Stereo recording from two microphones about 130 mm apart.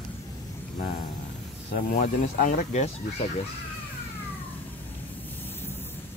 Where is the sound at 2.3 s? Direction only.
85° left.